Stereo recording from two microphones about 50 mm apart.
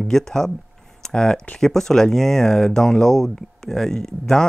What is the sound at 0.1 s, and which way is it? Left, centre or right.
Speech, centre.